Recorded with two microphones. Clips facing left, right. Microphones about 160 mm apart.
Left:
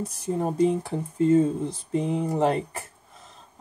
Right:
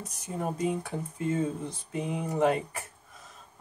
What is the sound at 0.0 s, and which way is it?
Speech, 30° left (ahead or behind).